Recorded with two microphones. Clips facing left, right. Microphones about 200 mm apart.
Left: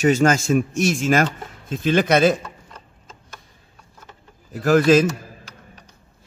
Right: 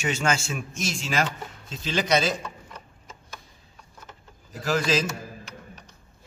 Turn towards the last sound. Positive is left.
turn(degrees=55)  # may be behind; listen again after turning